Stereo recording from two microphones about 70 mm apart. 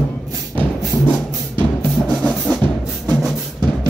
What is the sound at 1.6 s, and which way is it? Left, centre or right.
Music, centre.